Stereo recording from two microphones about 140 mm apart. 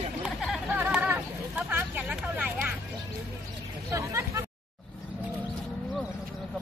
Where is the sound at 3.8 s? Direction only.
20° right (ahead or behind).